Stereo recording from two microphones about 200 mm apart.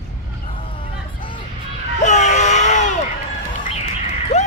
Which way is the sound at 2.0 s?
35° left (ahead or behind).